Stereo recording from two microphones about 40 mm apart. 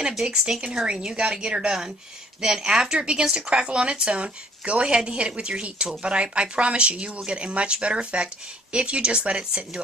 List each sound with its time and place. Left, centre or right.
0.1 s speech: centre
0.4 s speech: right